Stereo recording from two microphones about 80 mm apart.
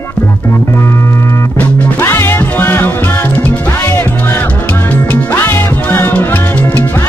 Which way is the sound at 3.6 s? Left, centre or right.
Left.